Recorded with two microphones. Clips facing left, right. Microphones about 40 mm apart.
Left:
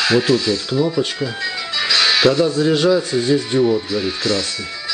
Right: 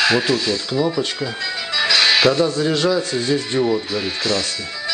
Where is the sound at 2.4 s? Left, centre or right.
Centre.